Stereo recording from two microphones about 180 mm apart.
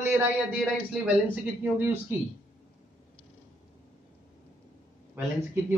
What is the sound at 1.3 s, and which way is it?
Speech, 10° right (ahead or behind).